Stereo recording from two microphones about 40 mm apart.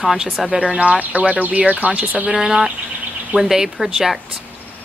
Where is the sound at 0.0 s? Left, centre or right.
Centre.